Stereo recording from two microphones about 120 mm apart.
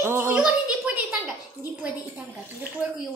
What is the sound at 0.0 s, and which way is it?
Speech, 20° right (ahead or behind).